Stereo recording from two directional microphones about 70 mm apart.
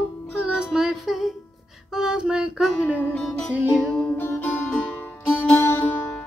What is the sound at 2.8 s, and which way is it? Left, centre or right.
Music, left.